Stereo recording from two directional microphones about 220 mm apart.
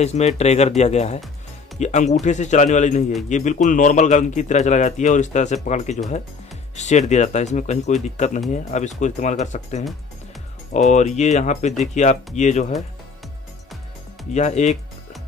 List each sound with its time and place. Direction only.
0.0 s a man's voice: 30° left (ahead or behind)
10.9 s a man's voice: 30° left (ahead or behind)
14.3 s a man's voice: 30° left (ahead or behind)